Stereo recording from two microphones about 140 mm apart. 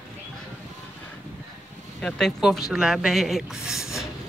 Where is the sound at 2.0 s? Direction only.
5° left (ahead or behind).